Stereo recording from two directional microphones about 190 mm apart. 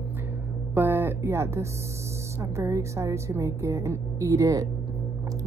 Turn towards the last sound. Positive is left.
turn(degrees=-15)  # may be behind; listen again after turning